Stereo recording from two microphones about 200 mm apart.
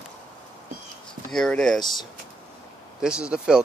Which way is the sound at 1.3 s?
5° left (ahead or behind).